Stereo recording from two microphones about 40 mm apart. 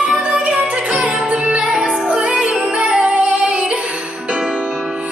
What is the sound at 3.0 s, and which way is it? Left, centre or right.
Female singing, right.